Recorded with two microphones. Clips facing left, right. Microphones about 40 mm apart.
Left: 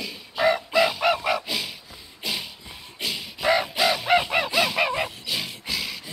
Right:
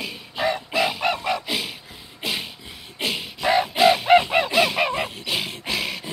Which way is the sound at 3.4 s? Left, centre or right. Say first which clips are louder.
Right 1 dB; centre.